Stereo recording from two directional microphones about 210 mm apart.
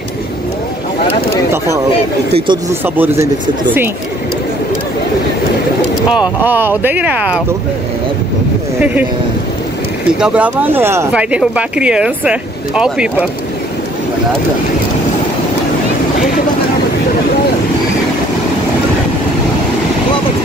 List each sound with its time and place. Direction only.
2.3 s speech: 25° right (ahead or behind)
2.8 s speech: 10° right (ahead or behind)
6.0 s speech: 5° right (ahead or behind)
10.2 s speech: 5° right (ahead or behind)